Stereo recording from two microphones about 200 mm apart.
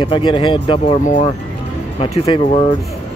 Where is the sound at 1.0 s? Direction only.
40° left (ahead or behind).